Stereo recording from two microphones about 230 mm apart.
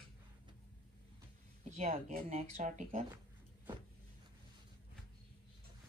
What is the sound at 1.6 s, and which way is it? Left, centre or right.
Speech, right.